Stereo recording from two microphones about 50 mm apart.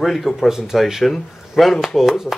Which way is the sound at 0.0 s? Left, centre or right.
Centre.